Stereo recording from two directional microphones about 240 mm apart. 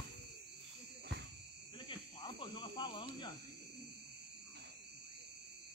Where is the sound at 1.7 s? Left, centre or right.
Left.